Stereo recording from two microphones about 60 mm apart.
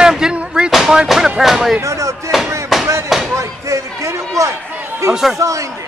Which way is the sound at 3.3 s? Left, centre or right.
Right.